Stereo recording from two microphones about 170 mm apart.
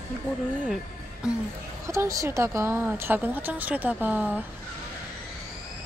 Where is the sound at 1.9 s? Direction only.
20° right (ahead or behind).